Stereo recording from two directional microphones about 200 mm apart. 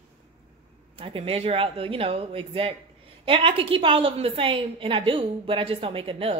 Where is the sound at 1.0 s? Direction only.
25° right (ahead or behind).